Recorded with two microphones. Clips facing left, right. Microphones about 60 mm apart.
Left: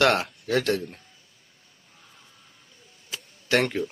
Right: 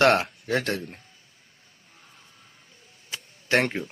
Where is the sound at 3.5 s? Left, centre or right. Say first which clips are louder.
Even; right.